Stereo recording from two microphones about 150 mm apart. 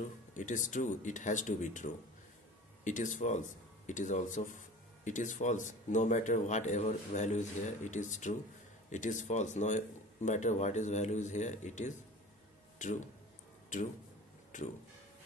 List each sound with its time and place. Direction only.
0.3 s speech: 55° left (ahead or behind)
14.5 s speech: 55° left (ahead or behind)